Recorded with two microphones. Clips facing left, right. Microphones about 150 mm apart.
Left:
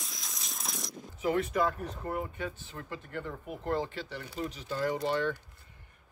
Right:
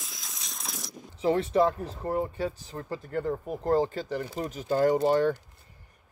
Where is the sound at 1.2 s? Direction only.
30° right (ahead or behind).